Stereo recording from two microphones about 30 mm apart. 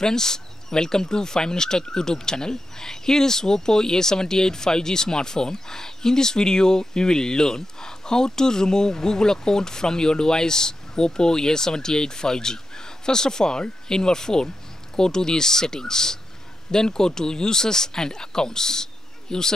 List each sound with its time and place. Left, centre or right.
0.0 s speech: centre